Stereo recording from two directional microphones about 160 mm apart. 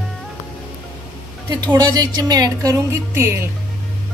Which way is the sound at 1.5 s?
25° right (ahead or behind).